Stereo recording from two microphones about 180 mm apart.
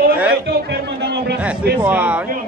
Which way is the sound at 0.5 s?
65° right (ahead or behind).